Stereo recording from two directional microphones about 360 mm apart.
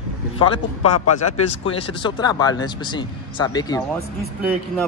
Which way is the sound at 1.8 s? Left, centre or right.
Centre.